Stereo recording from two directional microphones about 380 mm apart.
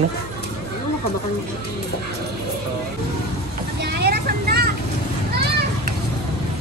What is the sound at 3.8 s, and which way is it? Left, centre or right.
Vehicle, right.